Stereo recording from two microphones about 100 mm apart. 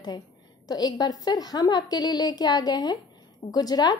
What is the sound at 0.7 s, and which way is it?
A woman's voice, 40° left (ahead or behind).